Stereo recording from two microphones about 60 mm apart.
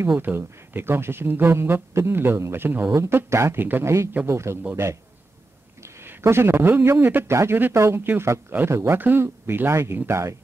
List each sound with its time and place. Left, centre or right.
0.1 s speech: right
2.9 s speech: right
5.8 s a man's voice: right
7.2 s speech: right
8.0 s speech: right
8.6 s speech: right
8.9 s speech: right